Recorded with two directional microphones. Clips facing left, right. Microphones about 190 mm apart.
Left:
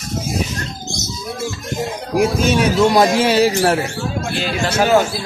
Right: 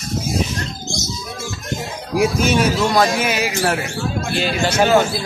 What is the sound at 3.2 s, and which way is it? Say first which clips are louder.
Speech: left 6 dB; 35° left (ahead or behind).